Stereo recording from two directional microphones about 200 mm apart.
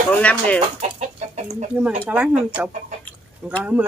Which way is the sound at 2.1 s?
5° right (ahead or behind).